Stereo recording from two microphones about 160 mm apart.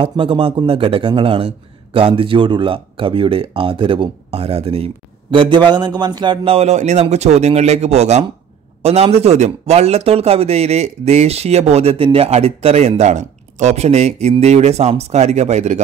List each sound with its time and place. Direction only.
0.0 s speech: 35° right (ahead or behind)